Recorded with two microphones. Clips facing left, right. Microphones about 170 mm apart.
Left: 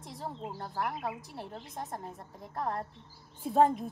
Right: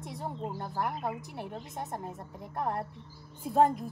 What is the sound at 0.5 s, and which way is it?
A woman's voice, 15° right (ahead or behind).